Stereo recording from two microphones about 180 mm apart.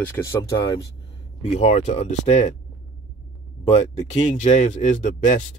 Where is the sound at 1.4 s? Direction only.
35° left (ahead or behind).